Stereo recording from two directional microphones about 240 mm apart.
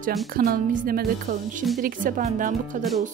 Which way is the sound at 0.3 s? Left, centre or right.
Right.